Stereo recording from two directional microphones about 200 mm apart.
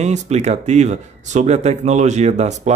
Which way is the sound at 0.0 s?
35° right (ahead or behind).